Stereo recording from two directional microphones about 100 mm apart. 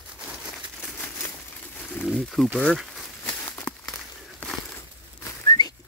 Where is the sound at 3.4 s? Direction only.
30° left (ahead or behind).